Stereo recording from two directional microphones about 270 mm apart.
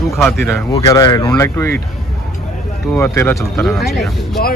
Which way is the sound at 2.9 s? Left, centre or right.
Centre.